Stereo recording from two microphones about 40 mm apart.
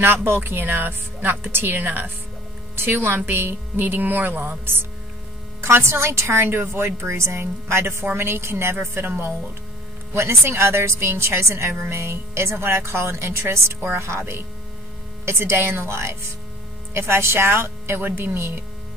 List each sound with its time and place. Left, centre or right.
0.0 s a woman's voice: right
1.8 s speech: right
2.7 s speech: right
3.2 s speech: right
5.6 s a woman's voice: right
10.4 s a woman's voice: right
15.2 s a woman's voice: right